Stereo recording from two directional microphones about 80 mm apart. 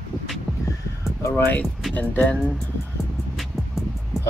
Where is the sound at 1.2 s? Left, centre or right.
Left.